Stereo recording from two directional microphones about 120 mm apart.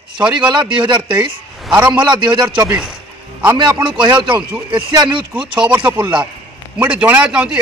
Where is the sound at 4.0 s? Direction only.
40° right (ahead or behind).